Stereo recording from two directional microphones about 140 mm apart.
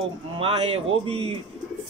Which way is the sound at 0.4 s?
40° right (ahead or behind).